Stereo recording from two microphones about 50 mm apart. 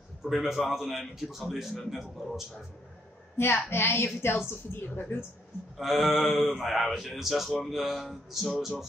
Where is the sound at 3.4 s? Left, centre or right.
Left.